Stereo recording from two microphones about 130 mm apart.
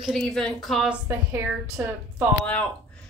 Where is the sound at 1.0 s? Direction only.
20° right (ahead or behind).